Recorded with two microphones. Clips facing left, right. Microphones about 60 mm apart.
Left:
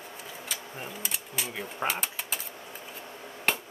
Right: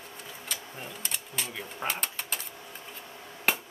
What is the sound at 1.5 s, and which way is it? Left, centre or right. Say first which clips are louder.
Speech: left 3 dB; centre.